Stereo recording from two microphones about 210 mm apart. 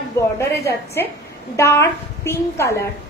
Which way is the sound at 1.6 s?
15° left (ahead or behind).